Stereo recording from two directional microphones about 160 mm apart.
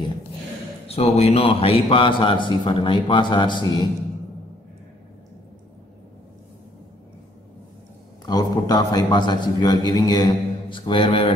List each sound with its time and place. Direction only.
0.8 s a man's voice: 40° left (ahead or behind)
8.3 s a man's voice: 25° left (ahead or behind)